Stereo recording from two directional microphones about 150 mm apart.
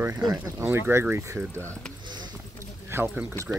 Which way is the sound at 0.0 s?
25° right (ahead or behind).